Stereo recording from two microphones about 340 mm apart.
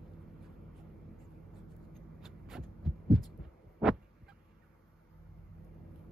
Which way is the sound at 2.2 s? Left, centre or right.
Centre.